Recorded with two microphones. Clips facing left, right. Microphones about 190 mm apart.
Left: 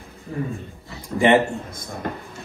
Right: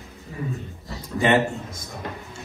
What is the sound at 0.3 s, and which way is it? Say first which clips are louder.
Speech: left 6 dB; 55° left (ahead or behind).